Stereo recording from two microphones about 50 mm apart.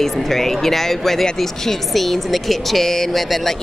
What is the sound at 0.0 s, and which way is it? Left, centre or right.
Speech, centre.